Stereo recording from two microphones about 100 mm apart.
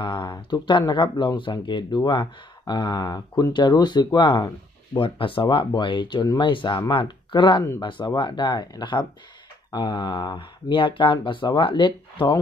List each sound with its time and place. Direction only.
0.0 s speech: 50° left (ahead or behind)